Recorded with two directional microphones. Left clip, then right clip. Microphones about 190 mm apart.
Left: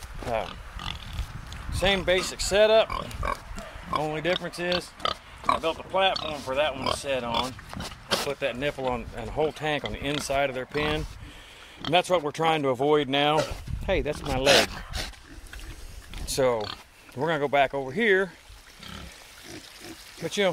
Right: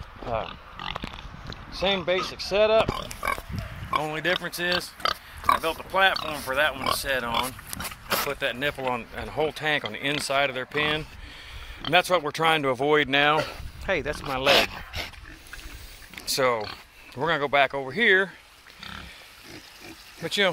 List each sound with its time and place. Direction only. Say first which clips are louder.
0.2 s pig: even; 15° left (ahead or behind)
0.5 s pig: right 2 dB; 55° left (ahead or behind)
1.8 s speech: left 1 dB; 10° left (ahead or behind)
3.0 s speech: right 2 dB; 30° left (ahead or behind)
4.0 s speech: left 1 dB; 10° left (ahead or behind)
7.8 s a sound: right 1 dB; 25° left (ahead or behind)
8.3 s speech: right 1 dB; 10° left (ahead or behind)
13.8 s speech: even; 30° left (ahead or behind)
16.3 s dog: right 1 dB; 25° left (ahead or behind)
17.2 s speech: right 1 dB; 15° left (ahead or behind)